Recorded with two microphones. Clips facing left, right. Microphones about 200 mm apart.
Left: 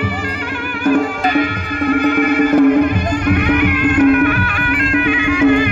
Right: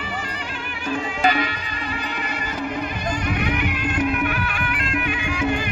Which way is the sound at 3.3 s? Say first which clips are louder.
Left 12 dB; 75° left (ahead or behind).